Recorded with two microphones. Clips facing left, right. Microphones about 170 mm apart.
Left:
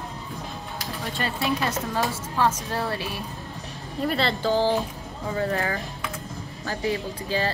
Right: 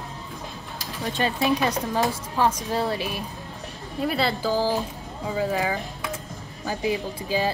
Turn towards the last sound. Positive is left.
turn(degrees=-10)  # may be behind; listen again after turning